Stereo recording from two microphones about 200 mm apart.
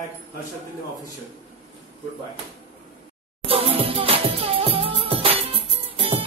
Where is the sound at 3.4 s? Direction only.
30° right (ahead or behind).